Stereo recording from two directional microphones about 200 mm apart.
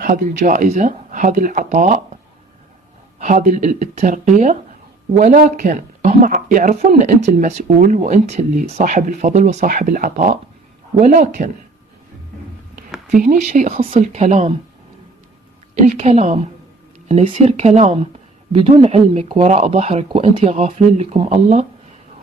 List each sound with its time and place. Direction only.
0.0 s speech: 40° right (ahead or behind)
3.2 s speech: 40° right (ahead or behind)
13.1 s speech: 40° right (ahead or behind)
15.7 s speech: 35° right (ahead or behind)